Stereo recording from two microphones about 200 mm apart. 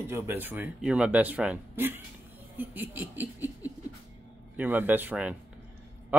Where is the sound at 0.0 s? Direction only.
10° right (ahead or behind).